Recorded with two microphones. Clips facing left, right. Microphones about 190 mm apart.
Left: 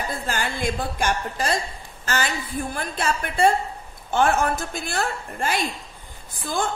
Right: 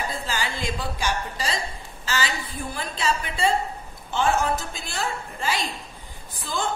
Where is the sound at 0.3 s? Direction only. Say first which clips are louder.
Left 6 dB; 55° left (ahead or behind).